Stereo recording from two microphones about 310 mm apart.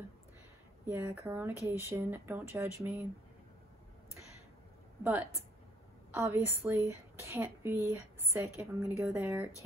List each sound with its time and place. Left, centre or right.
0.8 s speech: centre
6.1 s speech: centre